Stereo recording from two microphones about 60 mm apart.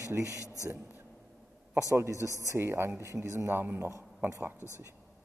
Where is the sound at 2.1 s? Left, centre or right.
Left.